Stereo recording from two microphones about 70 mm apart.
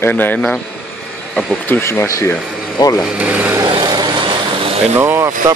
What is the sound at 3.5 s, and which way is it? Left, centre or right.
Vehicle, right.